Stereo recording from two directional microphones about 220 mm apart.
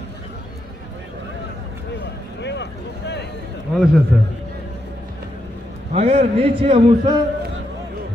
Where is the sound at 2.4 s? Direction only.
55° left (ahead or behind).